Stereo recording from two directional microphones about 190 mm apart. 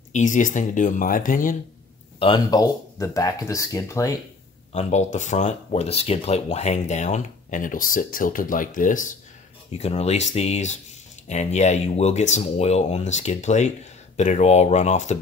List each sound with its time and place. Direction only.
0.1 s speech: 40° left (ahead or behind)
2.1 s speech: 25° left (ahead or behind)
4.7 s speech: 40° left (ahead or behind)